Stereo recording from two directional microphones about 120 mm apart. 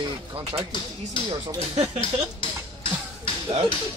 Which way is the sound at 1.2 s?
45° left (ahead or behind).